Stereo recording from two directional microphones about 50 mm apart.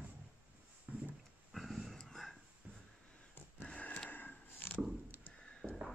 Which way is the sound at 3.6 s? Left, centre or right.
Left.